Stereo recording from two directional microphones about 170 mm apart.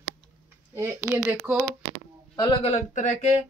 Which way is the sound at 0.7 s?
15° right (ahead or behind).